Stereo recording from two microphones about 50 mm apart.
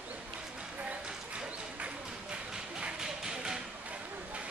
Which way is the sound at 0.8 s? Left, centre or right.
Right.